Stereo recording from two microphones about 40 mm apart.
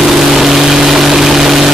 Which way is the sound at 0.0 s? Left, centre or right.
Centre.